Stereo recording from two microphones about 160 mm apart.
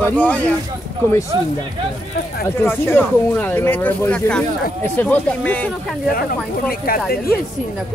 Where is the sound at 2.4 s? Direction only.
15° left (ahead or behind).